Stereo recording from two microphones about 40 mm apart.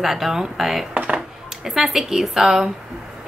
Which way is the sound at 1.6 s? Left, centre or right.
Centre.